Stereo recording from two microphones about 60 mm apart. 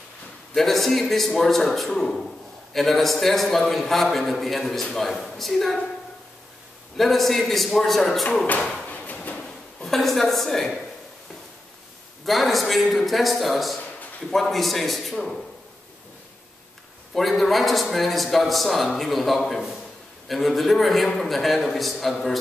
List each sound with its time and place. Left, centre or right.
0.6 s a man's voice: centre
7.0 s a man's voice: centre
8.9 s a sound: left
9.4 s a sound: centre
12.3 s a man's voice: centre
17.1 s a man's voice: centre